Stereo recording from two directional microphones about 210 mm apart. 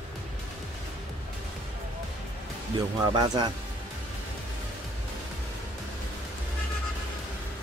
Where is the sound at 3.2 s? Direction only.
20° right (ahead or behind).